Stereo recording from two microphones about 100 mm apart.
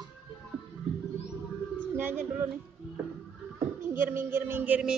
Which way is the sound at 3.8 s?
20° right (ahead or behind).